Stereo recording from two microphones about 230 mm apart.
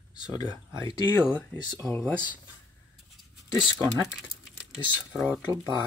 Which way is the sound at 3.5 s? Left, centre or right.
Centre.